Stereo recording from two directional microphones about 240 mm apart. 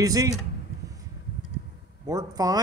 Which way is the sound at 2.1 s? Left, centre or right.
Centre.